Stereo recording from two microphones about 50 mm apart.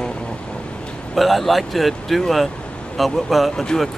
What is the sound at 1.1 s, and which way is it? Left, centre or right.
Speech, centre.